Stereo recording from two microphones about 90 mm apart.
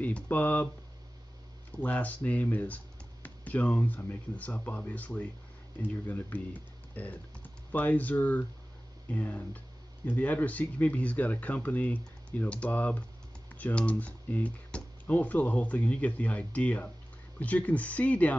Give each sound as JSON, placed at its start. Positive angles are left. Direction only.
{"t": 0.0, "sound": "speech", "side_deg": 20}
{"t": 1.8, "sound": "speech", "side_deg": 15}